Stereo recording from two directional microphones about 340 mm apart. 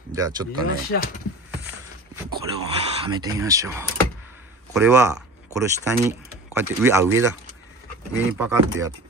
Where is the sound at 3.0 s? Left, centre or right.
Centre.